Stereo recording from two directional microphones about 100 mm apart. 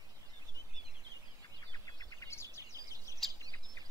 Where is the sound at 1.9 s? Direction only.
35° left (ahead or behind).